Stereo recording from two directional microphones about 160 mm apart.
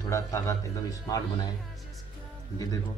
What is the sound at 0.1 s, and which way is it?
Speech, 20° left (ahead or behind).